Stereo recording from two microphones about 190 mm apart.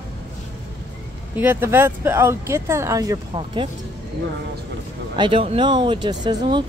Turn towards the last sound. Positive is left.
turn(degrees=-25)  # may be behind; listen again after turning